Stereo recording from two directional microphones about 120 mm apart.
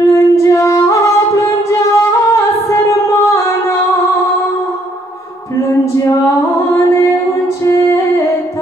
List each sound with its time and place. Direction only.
0.0 s music: 25° left (ahead or behind)
5.9 s female singing: 25° left (ahead or behind)
7.4 s music: 25° left (ahead or behind)